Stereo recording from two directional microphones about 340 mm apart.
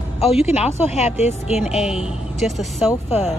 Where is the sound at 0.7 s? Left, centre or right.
Centre.